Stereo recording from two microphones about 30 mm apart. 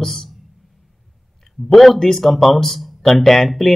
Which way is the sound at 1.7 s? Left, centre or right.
Centre.